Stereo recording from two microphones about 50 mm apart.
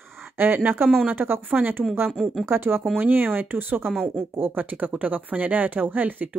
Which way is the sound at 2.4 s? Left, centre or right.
Right.